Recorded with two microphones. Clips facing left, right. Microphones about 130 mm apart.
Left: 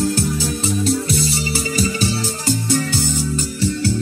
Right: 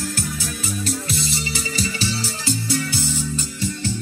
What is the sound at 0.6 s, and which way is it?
Music, 35° left (ahead or behind).